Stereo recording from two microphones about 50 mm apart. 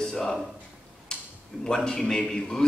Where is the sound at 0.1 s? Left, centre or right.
Centre.